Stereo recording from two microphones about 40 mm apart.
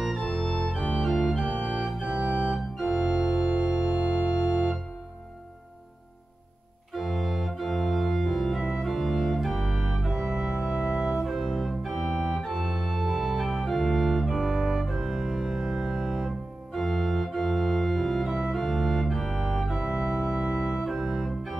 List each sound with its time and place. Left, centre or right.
0.0 s organ: centre
6.9 s organ: centre